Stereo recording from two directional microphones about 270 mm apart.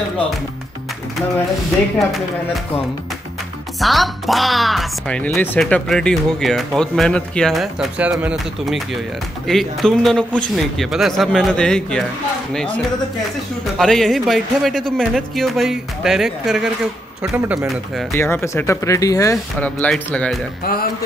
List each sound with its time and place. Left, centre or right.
3.8 s speech: centre
20.6 s speech: left